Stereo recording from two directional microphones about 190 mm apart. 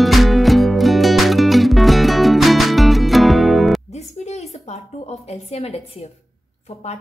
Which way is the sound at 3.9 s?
35° left (ahead or behind).